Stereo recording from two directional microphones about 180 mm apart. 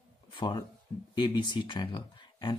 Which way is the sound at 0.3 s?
25° left (ahead or behind).